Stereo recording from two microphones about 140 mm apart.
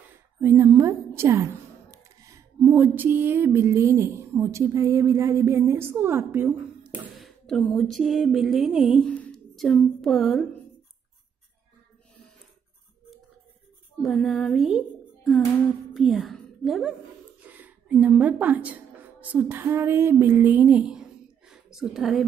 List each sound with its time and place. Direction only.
0.4 s speech: 20° right (ahead or behind)
7.2 s speech: centre (ahead or behind)
9.0 s a sound: 5° left (ahead or behind)
10.0 s speech: centre (ahead or behind)
14.0 s speech: centre (ahead or behind)
15.9 s a woman's voice: centre (ahead or behind)
17.4 s speech: 10° right (ahead or behind)
21.5 s a sound: 5° right (ahead or behind)